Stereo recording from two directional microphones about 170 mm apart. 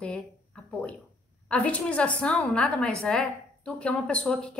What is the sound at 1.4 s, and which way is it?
A woman's voice, 5° left (ahead or behind).